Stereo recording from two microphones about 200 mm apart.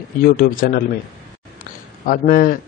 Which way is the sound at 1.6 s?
45° left (ahead or behind).